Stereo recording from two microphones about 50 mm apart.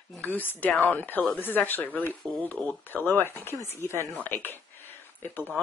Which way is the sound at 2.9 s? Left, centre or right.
Left.